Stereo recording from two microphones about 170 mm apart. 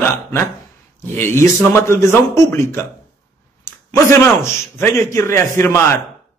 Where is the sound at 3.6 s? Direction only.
15° left (ahead or behind).